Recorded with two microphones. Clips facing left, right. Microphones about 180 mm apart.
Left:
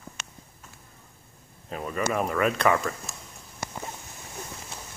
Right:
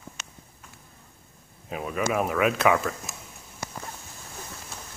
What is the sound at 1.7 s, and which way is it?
Speech, 5° right (ahead or behind).